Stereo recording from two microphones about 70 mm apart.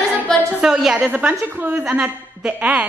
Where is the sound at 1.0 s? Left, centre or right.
Right.